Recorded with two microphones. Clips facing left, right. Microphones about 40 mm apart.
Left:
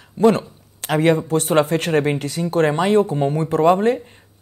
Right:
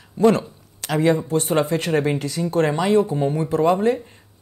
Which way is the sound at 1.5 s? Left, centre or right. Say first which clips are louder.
Left 4 dB; left.